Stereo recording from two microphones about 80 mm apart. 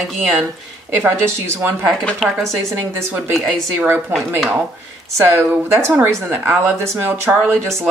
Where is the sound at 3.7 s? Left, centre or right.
Right.